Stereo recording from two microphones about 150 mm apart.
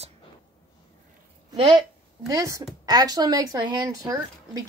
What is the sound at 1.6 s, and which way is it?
Speech, 30° right (ahead or behind).